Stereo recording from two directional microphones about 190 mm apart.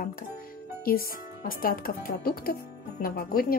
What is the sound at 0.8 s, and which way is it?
A woman's voice, 50° left (ahead or behind).